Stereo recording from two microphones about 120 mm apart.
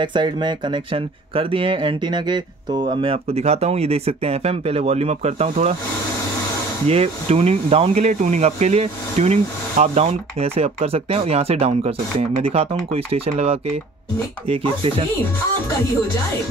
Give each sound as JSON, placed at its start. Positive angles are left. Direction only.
{"t": 0.0, "sound": "speech", "side_deg": -40}
{"t": 6.9, "sound": "speech", "side_deg": -55}
{"t": 10.0, "sound": "speech", "side_deg": -55}